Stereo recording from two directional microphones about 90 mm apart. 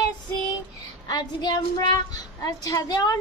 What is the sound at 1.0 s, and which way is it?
A woman's voice, 45° left (ahead or behind).